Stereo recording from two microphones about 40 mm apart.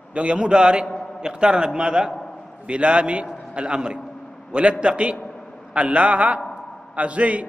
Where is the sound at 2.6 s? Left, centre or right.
Right.